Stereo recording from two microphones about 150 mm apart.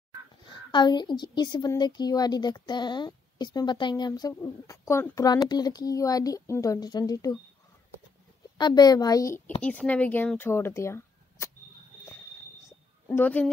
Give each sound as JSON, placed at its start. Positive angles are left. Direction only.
{"t": 0.7, "sound": "speech", "side_deg": 30}
{"t": 8.5, "sound": "speech", "side_deg": 30}
{"t": 9.6, "sound": "speech", "side_deg": 10}
{"t": 13.1, "sound": "speech", "side_deg": 10}